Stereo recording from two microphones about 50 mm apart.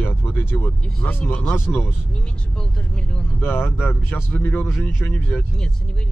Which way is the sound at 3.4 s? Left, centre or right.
Left.